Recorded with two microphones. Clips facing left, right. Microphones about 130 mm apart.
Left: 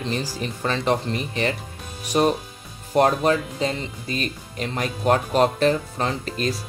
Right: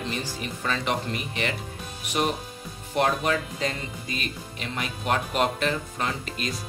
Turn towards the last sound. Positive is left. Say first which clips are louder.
# left 6 dB
turn(degrees=35)  # may be behind; listen again after turning